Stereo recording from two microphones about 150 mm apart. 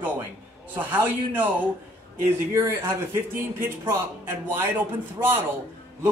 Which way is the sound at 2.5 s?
15° right (ahead or behind).